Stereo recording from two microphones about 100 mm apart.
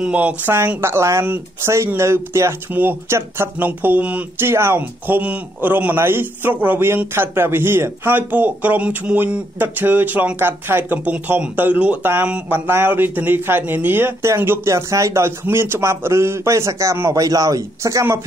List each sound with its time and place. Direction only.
0.0 s speech: 15° right (ahead or behind); by 18.0 s 35° right (ahead or behind)